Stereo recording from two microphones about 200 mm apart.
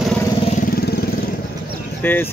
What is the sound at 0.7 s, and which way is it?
Vehicle, 50° left (ahead or behind).